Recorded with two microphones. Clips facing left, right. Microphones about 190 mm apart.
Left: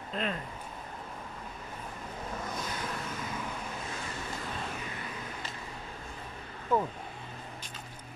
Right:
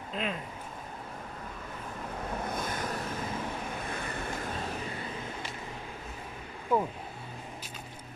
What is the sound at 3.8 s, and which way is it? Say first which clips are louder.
Vehicle: right 3 dB; 60° right (ahead or behind).